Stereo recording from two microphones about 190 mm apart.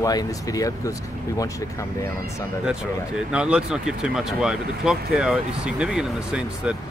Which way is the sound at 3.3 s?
5° right (ahead or behind).